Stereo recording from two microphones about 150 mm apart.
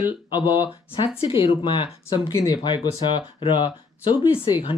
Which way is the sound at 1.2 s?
35° left (ahead or behind).